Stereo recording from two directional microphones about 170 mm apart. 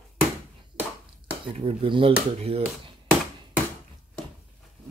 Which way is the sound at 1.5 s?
35° right (ahead or behind).